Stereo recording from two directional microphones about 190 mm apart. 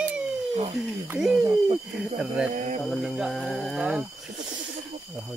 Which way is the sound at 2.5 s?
40° right (ahead or behind).